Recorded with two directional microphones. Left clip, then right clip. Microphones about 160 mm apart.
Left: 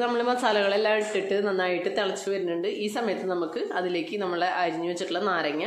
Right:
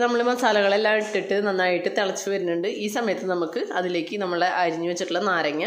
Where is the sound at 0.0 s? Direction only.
20° right (ahead or behind).